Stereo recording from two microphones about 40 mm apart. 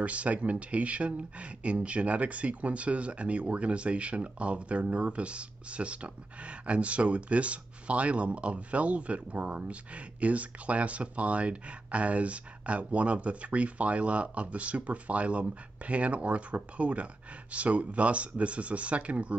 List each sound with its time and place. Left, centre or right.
0.0 s speech: right